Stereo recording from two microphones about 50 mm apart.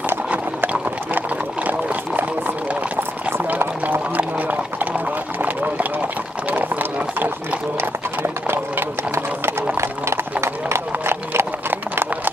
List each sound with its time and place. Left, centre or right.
1.1 s a sound: right
3.0 s clip-clop: right
3.4 s run: right
5.4 s a sound: right
6.5 s run: right
8.2 s clip-clop: right
9.1 s clip-clop: right